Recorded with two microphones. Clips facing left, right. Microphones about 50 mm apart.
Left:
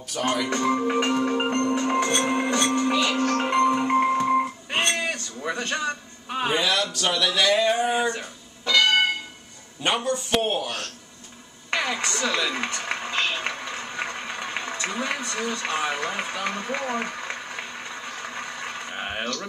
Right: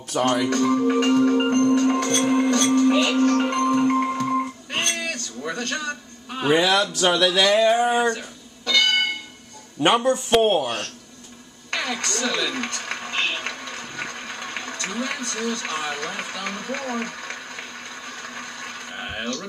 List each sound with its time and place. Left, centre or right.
0.1 s speech: right
0.5 s music: centre
7.0 s speech: right
7.8 s a sound: centre
8.1 s music: centre
10.0 s speech: right
11.7 s speech: centre
13.3 s a sound: centre